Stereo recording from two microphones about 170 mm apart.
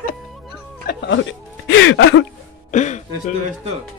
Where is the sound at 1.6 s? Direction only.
90° left.